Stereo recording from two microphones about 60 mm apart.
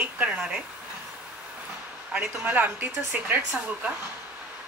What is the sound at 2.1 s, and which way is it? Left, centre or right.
Speech, right.